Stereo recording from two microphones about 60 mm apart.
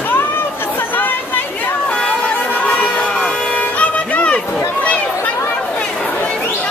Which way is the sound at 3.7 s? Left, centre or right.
Left.